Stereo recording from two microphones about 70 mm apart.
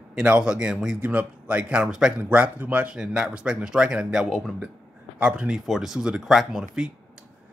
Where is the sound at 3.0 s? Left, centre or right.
Centre.